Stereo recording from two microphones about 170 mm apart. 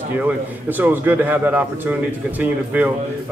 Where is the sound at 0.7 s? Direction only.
10° right (ahead or behind).